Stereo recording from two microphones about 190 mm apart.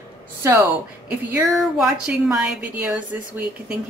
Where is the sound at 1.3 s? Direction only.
Centre (ahead or behind).